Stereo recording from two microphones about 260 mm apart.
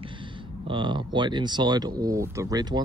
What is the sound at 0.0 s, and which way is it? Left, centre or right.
Speech, centre.